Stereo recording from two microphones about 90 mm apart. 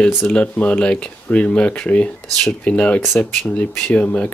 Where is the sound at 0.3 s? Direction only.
15° left (ahead or behind).